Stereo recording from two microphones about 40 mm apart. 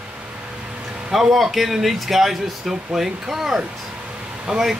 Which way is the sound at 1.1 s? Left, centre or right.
Centre.